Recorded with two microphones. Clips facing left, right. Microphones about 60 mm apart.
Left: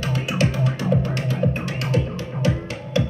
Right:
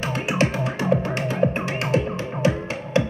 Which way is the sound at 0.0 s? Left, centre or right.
Right.